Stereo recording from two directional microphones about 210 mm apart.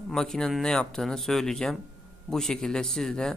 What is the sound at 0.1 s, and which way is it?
Speech, 5° left (ahead or behind).